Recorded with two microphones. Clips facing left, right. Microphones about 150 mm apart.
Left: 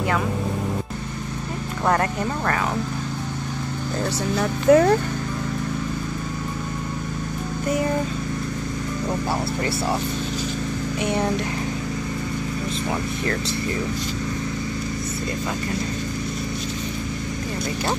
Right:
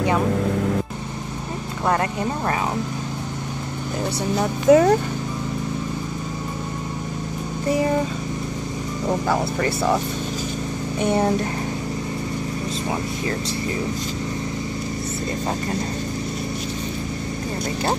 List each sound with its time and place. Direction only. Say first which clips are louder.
4.4 s speech: right 1 dB; 20° right (ahead or behind)